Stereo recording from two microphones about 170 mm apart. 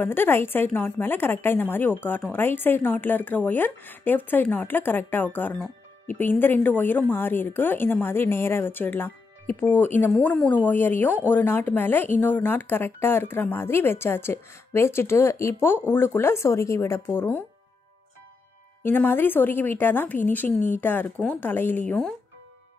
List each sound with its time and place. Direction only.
0.0 s a woman's voice: 10° left (ahead or behind)
18.8 s a woman's voice: 10° left (ahead or behind)